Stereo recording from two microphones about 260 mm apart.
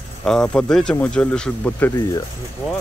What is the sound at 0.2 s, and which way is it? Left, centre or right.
Speech, centre.